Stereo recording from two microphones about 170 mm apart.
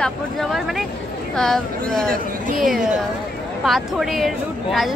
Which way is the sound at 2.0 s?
55° right (ahead or behind).